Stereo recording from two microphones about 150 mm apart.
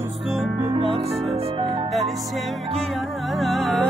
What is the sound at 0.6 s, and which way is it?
Music, 40° right (ahead or behind).